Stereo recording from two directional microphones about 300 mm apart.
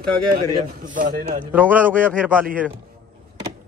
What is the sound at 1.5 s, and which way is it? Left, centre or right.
Speech, centre.